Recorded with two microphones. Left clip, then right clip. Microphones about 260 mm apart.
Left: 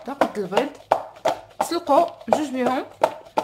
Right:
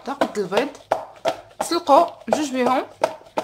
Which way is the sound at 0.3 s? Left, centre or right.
Right.